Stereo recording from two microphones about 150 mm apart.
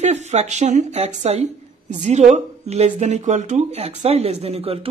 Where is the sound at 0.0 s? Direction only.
50° right (ahead or behind).